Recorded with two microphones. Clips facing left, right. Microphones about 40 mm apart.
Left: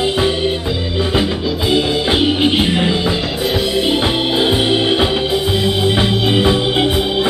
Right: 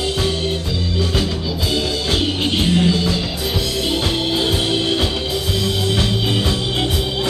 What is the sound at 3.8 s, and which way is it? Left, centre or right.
Music, left.